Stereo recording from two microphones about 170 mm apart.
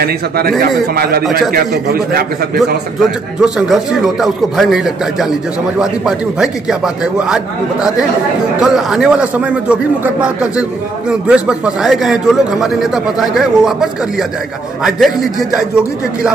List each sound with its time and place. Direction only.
0.0 s a man's voice: 65° right (ahead or behind)
3.3 s a man's voice: 5° right (ahead or behind)